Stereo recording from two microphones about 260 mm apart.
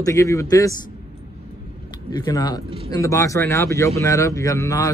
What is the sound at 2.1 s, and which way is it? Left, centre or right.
Speech, centre.